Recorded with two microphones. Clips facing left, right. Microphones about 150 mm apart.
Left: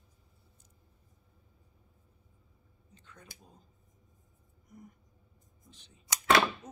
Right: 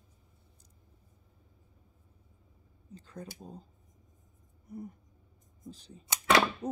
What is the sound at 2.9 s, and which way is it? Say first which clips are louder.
Speech: right 11 dB; 35° right (ahead or behind).